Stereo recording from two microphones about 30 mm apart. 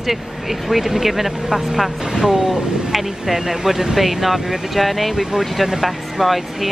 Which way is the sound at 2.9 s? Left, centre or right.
Centre.